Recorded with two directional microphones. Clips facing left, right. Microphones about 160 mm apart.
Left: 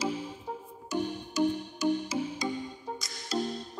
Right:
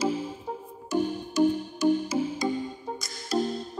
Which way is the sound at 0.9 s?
45° right (ahead or behind).